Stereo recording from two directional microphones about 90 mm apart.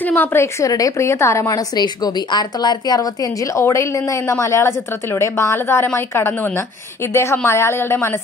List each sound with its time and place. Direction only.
0.0 s a woman's voice: 25° left (ahead or behind)
1.8 s a woman's voice: 55° left (ahead or behind)
3.5 s a woman's voice: 30° left (ahead or behind)